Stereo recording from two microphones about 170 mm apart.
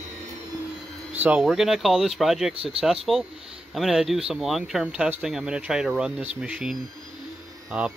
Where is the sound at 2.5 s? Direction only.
35° right (ahead or behind).